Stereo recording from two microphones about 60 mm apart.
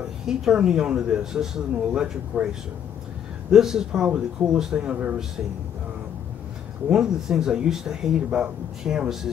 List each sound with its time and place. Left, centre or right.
0.3 s speech: centre
3.5 s speech: centre
6.9 s speech: centre